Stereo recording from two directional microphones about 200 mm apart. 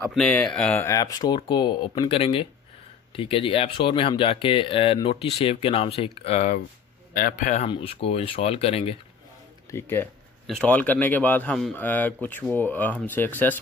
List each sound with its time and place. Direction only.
0.1 s speech: 5° left (ahead or behind); by 8.9 s 30° left (ahead or behind)
9.7 s speech: 10° left (ahead or behind)